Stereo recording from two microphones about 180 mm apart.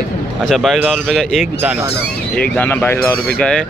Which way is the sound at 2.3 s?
10° left (ahead or behind).